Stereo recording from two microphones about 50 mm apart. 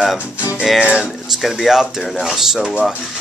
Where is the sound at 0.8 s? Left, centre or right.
Centre.